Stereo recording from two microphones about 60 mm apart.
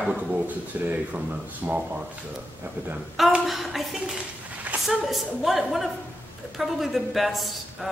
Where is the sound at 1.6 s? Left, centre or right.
Right.